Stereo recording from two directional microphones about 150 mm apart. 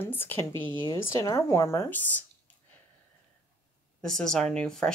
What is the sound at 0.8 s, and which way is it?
Speech, 20° left (ahead or behind).